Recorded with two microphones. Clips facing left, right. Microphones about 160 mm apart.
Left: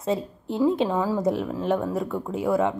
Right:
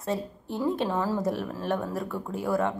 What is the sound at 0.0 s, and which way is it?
Speech, 20° left (ahead or behind).